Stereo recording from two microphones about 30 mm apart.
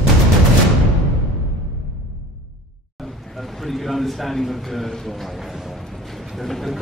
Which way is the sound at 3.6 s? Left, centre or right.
Centre.